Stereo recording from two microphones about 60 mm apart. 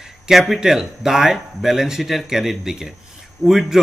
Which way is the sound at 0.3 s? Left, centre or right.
Centre.